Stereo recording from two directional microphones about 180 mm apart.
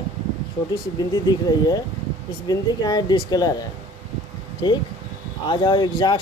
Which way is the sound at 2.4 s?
20° left (ahead or behind).